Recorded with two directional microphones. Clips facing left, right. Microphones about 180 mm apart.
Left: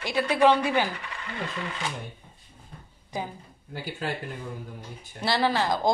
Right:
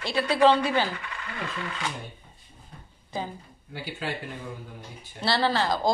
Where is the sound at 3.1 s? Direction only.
15° left (ahead or behind).